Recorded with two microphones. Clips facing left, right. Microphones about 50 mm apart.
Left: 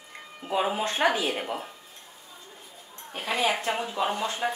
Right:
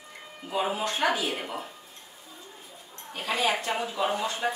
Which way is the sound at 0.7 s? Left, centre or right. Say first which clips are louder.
Left 2 dB; left.